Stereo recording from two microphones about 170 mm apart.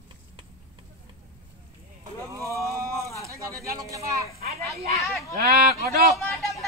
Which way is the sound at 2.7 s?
20° right (ahead or behind).